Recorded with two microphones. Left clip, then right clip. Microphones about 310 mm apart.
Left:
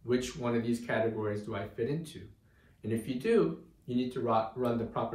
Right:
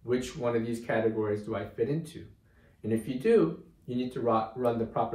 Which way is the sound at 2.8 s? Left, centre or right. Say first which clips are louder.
Right 4 dB; centre.